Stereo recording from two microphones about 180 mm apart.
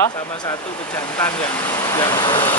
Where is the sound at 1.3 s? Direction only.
5° left (ahead or behind).